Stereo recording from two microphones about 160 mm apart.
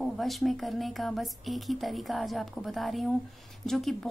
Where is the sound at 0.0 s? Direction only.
Centre (ahead or behind).